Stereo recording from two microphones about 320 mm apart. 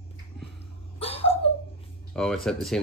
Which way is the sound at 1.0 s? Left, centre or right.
Centre.